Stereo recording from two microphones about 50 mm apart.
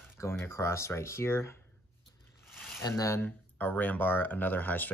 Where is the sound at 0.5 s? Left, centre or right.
Left.